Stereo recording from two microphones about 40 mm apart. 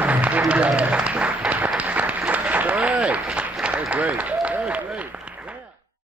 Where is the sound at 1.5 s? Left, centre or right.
Right.